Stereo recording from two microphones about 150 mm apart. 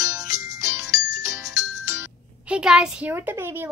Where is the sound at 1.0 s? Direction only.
20° right (ahead or behind).